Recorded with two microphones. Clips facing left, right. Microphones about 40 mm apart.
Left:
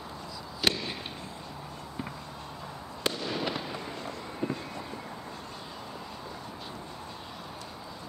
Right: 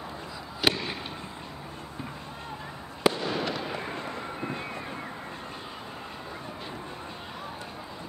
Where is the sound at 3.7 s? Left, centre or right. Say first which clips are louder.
Right 3 dB; right.